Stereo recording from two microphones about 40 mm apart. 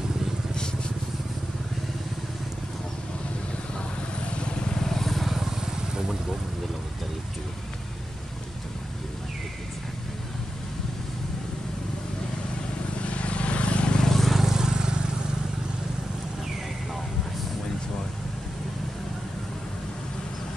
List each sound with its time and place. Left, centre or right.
4.4 s vehicle: left
4.7 s vehicle: centre
13.0 s vehicle: left
14.0 s vehicle: centre
14.4 s vehicle: centre